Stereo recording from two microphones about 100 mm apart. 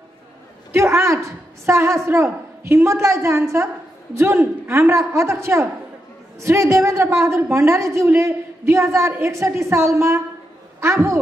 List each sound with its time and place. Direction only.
0.7 s a man's voice: 25° right (ahead or behind)